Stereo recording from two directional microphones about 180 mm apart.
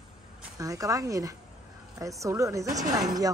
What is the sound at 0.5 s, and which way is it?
A woman's voice, 20° right (ahead or behind).